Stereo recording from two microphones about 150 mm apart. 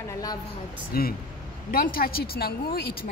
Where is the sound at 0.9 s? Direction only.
80° left.